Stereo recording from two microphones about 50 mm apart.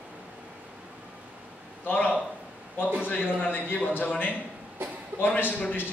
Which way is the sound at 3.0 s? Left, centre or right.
Left.